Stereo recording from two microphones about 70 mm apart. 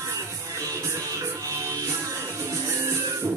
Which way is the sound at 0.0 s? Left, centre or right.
Right.